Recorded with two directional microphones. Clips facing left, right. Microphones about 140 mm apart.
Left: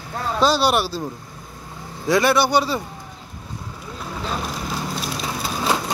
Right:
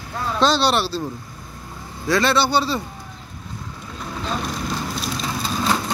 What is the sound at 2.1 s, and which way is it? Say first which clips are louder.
Speech: left 1 dB; 15° left (ahead or behind).